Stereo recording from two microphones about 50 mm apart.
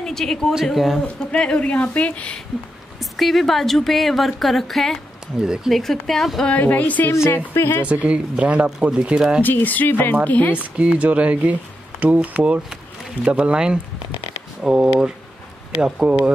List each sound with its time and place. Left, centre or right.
0.0 s a woman's voice: centre
1.0 s speech: left
3.0 s a woman's voice: centre
5.4 s speech: centre
5.7 s a woman's voice: centre
6.5 s speech: left
7.2 s speech: left
7.9 s speech: right
9.4 s speech: left
11.0 s speech: right